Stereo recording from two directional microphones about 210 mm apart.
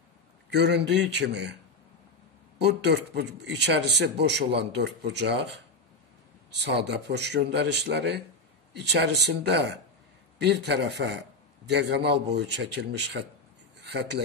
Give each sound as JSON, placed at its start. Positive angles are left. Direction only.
{"t": 0.5, "sound": "a man's voice", "side_deg": -55}
{"t": 2.8, "sound": "a man's voice", "side_deg": -55}
{"t": 6.5, "sound": "a man's voice", "side_deg": -55}